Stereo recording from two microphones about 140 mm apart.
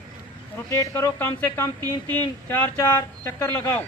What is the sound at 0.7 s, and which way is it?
Speech, 20° left (ahead or behind).